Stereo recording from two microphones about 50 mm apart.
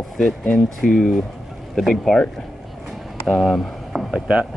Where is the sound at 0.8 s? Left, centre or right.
Centre.